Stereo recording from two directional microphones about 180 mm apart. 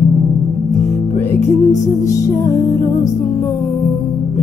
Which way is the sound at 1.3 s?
15° left (ahead or behind).